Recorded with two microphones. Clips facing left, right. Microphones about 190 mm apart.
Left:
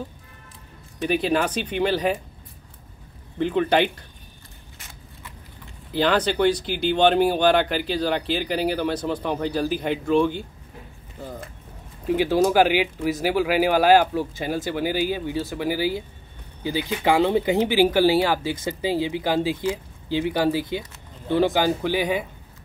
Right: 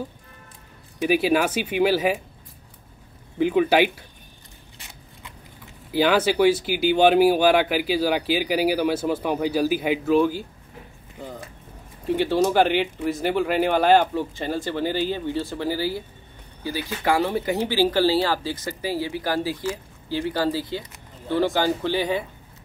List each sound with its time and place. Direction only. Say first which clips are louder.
1.0 s speech: right 2 dB; 5° right (ahead or behind)
3.3 s speech: right 2 dB; 5° right (ahead or behind)
5.9 s speech: right 2 dB; 5° right (ahead or behind); by 22.2 s 10° left (ahead or behind)